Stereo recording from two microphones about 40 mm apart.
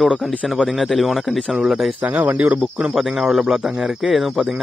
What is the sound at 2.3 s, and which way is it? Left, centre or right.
Speech, right.